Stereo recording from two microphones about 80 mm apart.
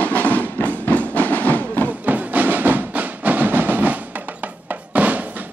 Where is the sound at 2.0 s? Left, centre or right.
Right.